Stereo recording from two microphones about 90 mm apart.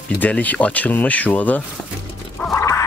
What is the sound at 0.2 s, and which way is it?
Speech, 15° left (ahead or behind).